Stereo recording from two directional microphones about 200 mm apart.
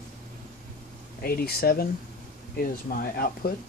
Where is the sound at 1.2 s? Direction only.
50° left (ahead or behind).